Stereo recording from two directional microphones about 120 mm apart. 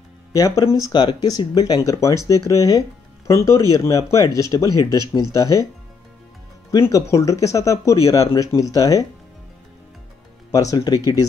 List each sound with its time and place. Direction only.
0.3 s speech: 25° left (ahead or behind)
4.6 s speech: 35° right (ahead or behind)
5.3 s speech: 30° left (ahead or behind)
6.8 s speech: 25° left (ahead or behind)
10.5 s speech: 30° left (ahead or behind)